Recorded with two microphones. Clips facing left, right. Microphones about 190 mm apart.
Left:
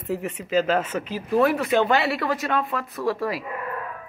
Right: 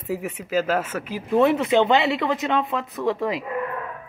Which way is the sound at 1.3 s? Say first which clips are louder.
Right 2 dB; 20° right (ahead or behind).